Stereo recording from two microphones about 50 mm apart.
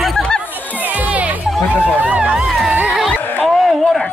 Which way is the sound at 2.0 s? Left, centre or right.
Right.